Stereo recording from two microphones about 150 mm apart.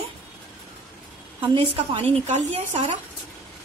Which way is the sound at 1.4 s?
35° right (ahead or behind).